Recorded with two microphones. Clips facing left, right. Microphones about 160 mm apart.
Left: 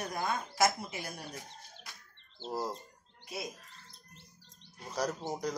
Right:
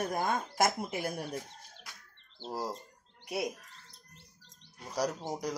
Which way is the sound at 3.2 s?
65° right (ahead or behind).